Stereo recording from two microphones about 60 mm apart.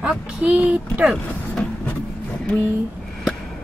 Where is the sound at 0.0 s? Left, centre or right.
Centre.